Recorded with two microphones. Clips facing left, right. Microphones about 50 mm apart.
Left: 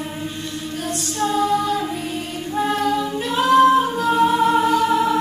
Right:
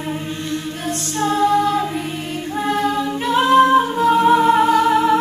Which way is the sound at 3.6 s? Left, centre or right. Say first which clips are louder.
Even; right.